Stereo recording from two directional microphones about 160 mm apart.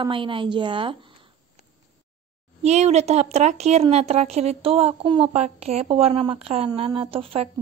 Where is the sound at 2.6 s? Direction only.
45° right (ahead or behind).